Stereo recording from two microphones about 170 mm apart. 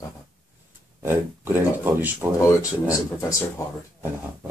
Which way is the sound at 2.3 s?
20° left (ahead or behind).